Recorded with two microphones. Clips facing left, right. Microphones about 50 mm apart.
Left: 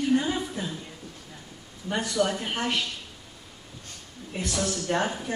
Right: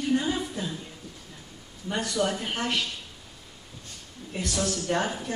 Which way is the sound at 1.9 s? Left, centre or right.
Centre.